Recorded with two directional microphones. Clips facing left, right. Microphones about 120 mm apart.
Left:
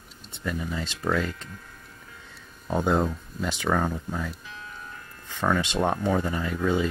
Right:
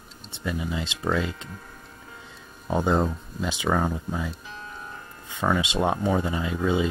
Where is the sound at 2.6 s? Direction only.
5° right (ahead or behind).